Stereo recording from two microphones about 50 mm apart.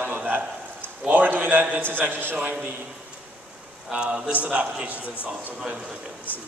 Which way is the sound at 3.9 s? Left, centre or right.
Centre.